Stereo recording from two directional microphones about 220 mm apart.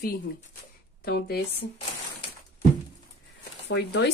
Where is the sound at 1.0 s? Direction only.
45° left (ahead or behind).